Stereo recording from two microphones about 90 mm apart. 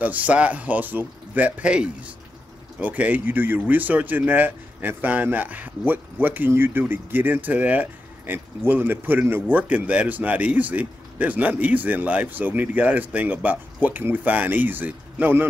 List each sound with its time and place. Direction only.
0.0 s speech: 15° right (ahead or behind)